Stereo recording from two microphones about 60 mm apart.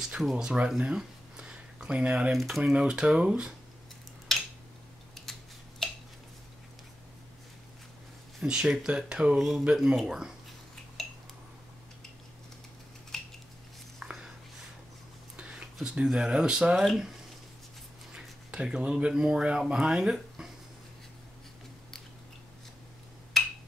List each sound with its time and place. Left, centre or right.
0.2 s speech: centre
2.3 s speech: centre
2.6 s speech: centre
5.3 s scissors: centre
5.8 s a sound: centre
8.4 s speech: centre
9.4 s speech: centre
11.0 s dishes: centre
13.1 s cutlery: centre
14.0 s a sound: centre
15.3 s speech: centre
18.1 s speech: centre
23.3 s a sound: centre